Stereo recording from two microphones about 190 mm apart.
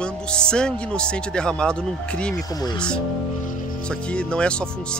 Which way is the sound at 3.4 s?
45° left (ahead or behind).